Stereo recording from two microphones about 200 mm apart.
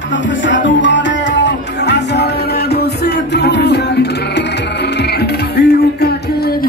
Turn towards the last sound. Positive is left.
turn(degrees=55)  # may be behind; listen again after turning